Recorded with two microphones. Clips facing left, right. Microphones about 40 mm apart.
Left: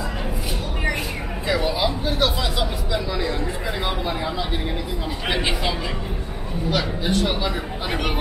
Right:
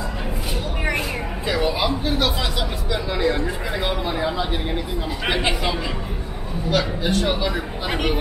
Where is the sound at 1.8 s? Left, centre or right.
Centre.